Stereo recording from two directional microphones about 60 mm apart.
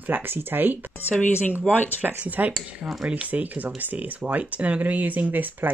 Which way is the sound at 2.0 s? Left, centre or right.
Right.